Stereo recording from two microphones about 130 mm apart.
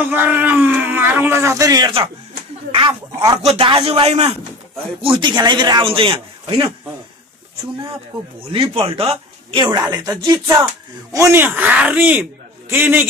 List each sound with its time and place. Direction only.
0.1 s speech: 15° right (ahead or behind)
2.9 s speech: 30° right (ahead or behind)
3.4 s speech: 45° right (ahead or behind)
5.0 s a man's voice: 40° right (ahead or behind)
8.5 s speech: 45° right (ahead or behind)
9.7 s a man's voice: 30° right (ahead or behind)